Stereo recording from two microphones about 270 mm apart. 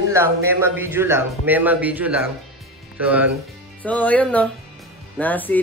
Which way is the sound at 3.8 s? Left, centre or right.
Centre.